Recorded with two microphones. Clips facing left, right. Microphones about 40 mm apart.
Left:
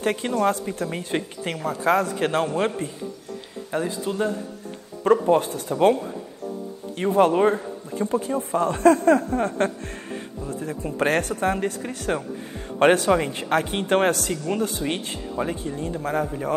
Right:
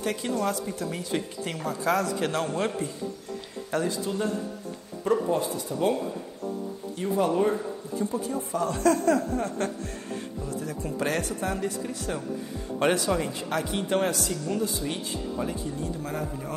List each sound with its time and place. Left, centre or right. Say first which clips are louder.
0.0 s a woman's voice: left 6 dB; left
5.0 s speech: left 7 dB; left
7.0 s a woman's voice: left 6 dB; left
14.3 s a woman's voice: left 3 dB; left